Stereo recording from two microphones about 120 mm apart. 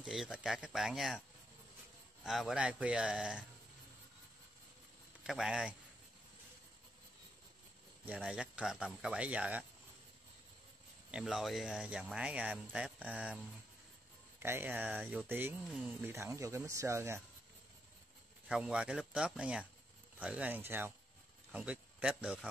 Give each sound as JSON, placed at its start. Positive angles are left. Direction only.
{"t": 0.0, "sound": "speech", "side_deg": -5}
{"t": 2.2, "sound": "speech", "side_deg": 0}
{"t": 5.2, "sound": "speech", "side_deg": -5}
{"t": 8.1, "sound": "speech", "side_deg": -10}
{"t": 11.1, "sound": "speech", "side_deg": -5}
{"t": 14.4, "sound": "speech", "side_deg": -20}
{"t": 18.5, "sound": "a man's voice", "side_deg": -5}